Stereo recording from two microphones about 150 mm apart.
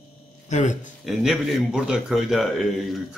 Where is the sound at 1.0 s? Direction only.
Centre (ahead or behind).